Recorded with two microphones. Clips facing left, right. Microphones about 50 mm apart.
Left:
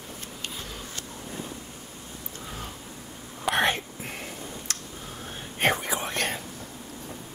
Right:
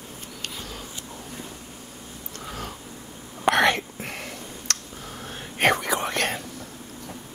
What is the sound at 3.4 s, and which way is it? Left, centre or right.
Whispering, right.